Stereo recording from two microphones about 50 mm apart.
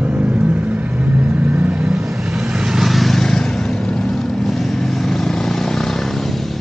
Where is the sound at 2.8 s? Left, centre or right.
Centre.